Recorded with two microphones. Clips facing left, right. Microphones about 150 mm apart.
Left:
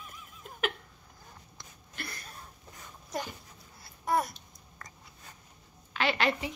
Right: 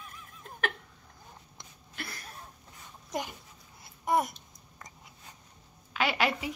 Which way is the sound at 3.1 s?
20° right (ahead or behind).